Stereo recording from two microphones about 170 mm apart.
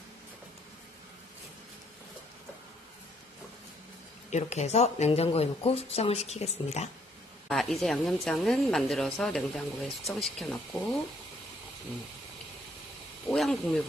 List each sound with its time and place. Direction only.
4.3 s speech: 45° left (ahead or behind)
7.4 s a woman's voice: centre (ahead or behind)
13.3 s a woman's voice: centre (ahead or behind)